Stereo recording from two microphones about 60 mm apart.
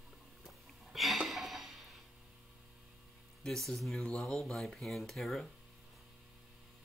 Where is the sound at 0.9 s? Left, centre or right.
Centre.